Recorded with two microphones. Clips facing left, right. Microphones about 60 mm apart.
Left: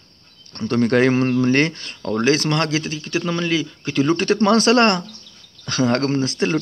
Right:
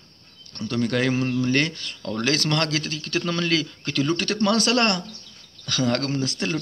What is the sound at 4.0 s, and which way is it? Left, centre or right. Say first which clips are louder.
Speech: left 6 dB; left.